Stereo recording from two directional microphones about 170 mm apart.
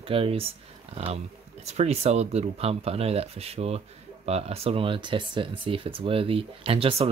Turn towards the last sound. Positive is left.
turn(degrees=-35)  # may be behind; listen again after turning